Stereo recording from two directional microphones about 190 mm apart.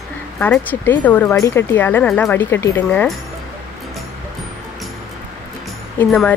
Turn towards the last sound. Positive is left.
turn(degrees=5)  # may be behind; listen again after turning